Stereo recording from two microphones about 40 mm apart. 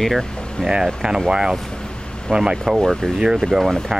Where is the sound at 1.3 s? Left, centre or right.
Centre.